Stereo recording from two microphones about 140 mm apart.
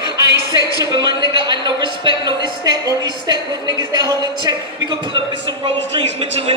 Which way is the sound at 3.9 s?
30° right (ahead or behind).